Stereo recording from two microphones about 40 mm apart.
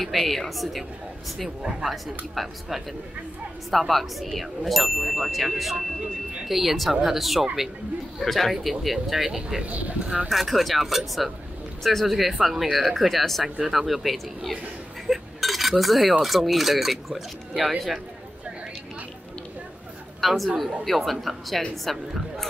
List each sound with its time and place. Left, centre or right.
0.0 s cutlery: centre
1.9 s cutlery: centre
9.6 s speech: right
10.3 s cutlery: centre
20.2 s a man's voice: centre
20.8 s cutlery: centre